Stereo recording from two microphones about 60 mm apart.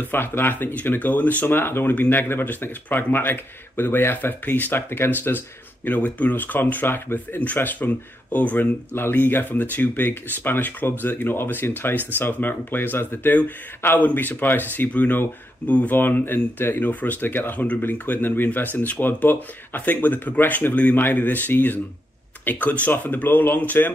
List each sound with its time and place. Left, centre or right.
0.0 s speech: left
5.9 s speech: left
16.0 s speech: left